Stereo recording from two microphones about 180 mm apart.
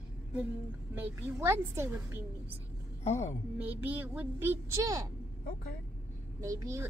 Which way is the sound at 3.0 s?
40° left (ahead or behind).